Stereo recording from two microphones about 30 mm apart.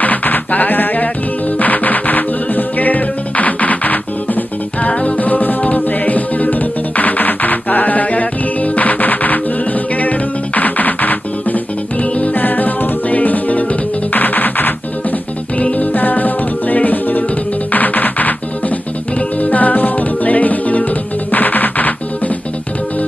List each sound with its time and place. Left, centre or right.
0.0 s sheep: left
1.6 s music: left
4.8 s music: left
12.4 s music: left
14.1 s music: left
15.7 s music: left
19.4 s music: left
21.3 s music: left